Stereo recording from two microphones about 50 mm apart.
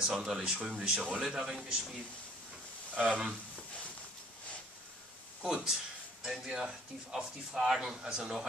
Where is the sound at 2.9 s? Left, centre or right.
Right.